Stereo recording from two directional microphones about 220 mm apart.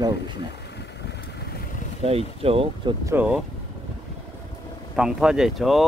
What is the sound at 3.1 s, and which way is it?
Speech, 5° right (ahead or behind).